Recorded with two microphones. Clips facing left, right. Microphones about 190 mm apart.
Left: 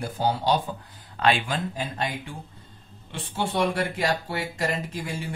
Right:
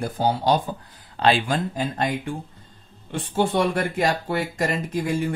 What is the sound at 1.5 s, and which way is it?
Speech, 50° right (ahead or behind).